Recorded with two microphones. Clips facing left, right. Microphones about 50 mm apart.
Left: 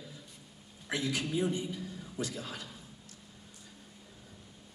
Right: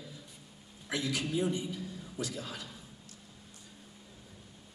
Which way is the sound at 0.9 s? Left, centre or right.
Left.